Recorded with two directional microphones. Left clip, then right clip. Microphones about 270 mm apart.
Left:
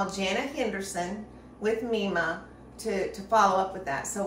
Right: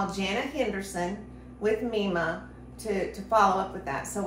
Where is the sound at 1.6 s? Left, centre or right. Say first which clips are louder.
Right 1 dB; centre.